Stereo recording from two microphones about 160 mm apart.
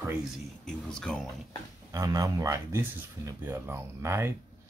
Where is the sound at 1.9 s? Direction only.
20° right (ahead or behind).